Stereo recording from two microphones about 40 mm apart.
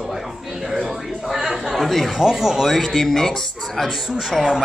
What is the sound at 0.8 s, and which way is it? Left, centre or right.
A man's voice, centre.